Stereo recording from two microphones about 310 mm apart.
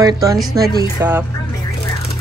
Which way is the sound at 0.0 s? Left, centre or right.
Centre.